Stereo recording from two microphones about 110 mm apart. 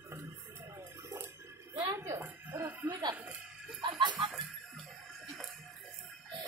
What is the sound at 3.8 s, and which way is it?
Music, 45° right (ahead or behind).